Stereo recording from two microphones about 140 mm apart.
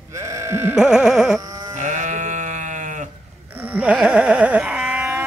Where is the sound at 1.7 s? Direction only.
60° right (ahead or behind).